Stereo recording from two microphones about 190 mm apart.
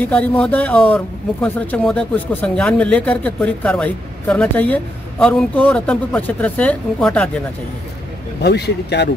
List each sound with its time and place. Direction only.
0.0 s speech: 5° left (ahead or behind)
8.4 s speech: 60° left (ahead or behind)